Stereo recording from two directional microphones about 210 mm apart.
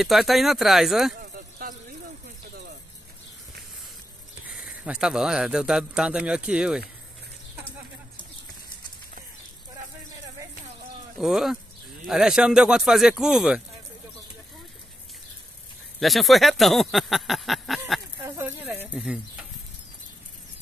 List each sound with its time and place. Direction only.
0.0 s a man's voice: centre (ahead or behind)
1.2 s a sound: 45° right (ahead or behind)
4.5 s a man's voice: centre (ahead or behind)
11.1 s a man's voice: centre (ahead or behind)
16.0 s a man's voice: centre (ahead or behind)
18.2 s speech: 10° right (ahead or behind)